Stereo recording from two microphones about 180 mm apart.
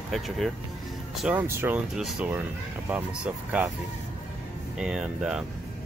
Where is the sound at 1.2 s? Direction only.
10° right (ahead or behind).